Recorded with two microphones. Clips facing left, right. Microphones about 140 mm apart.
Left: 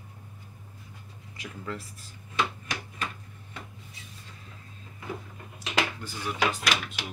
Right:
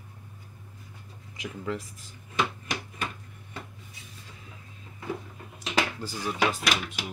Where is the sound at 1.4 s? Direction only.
20° right (ahead or behind).